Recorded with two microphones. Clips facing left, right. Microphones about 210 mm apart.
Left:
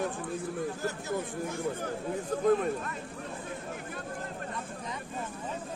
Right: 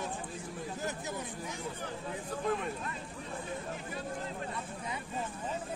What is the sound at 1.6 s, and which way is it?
Speech, 50° left (ahead or behind).